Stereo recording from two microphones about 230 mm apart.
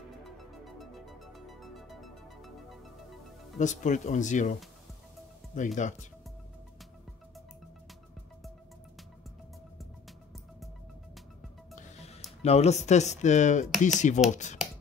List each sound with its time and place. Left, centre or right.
0.4 s music: centre
3.5 s speech: left
5.8 s speech: left
11.7 s music: left
12.4 s speech: left